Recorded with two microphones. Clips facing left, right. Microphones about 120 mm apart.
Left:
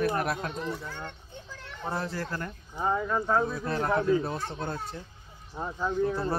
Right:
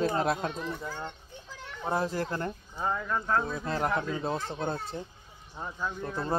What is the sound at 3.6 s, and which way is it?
A man's voice, 20° right (ahead or behind).